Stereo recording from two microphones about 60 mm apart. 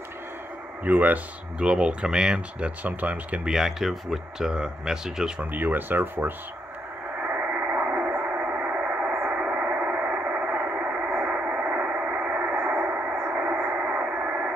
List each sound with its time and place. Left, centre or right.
0.8 s speech: right
3.4 s speech: centre
5.4 s speech: right
7.2 s radio: right